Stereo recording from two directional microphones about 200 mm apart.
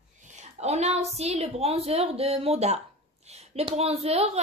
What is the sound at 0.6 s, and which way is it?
A woman's voice, 35° right (ahead or behind).